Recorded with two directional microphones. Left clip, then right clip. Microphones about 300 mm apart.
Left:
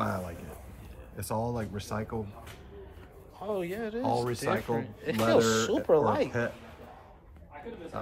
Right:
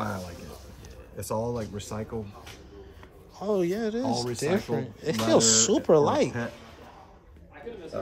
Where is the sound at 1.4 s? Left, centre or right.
Centre.